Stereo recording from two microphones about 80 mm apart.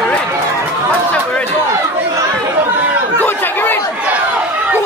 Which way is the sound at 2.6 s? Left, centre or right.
Right.